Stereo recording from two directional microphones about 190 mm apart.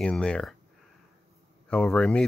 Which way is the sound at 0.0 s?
5° left (ahead or behind).